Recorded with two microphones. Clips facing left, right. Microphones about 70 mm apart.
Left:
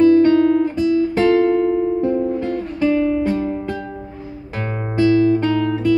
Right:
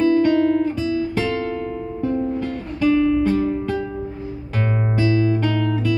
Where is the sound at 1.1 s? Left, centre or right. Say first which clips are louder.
Left 9 dB; left; by 3.6 s centre.